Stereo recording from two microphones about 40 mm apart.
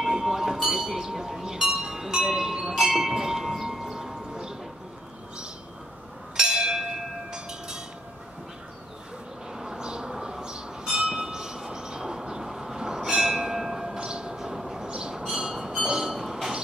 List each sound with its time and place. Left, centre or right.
0.0 s wind chime: centre
6.3 s bell: centre
9.5 s bell: centre
13.9 s train: right